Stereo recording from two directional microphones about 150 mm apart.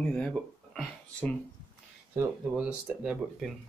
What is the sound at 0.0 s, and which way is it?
Speech, 5° left (ahead or behind).